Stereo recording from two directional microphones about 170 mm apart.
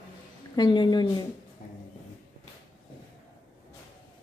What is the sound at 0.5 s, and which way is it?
Speech, 25° left (ahead or behind).